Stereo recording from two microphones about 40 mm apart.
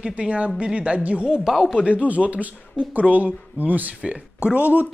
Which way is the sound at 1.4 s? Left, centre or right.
Centre.